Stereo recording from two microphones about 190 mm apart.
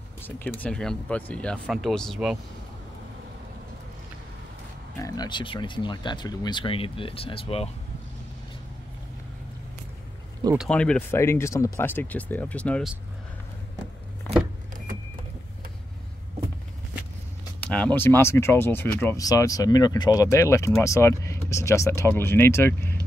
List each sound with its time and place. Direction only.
0.2 s speech: 10° left (ahead or behind)
4.9 s speech: 20° left (ahead or behind)
10.6 s speech: 5° left (ahead or behind)
17.6 s speech: 5° left (ahead or behind)